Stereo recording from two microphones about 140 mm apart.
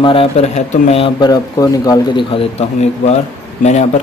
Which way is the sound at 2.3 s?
45° left (ahead or behind).